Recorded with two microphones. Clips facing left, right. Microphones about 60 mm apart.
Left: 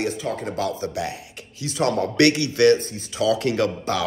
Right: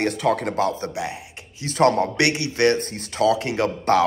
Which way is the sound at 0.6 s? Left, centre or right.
Right.